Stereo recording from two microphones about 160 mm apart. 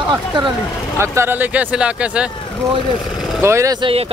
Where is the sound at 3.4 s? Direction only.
15° right (ahead or behind).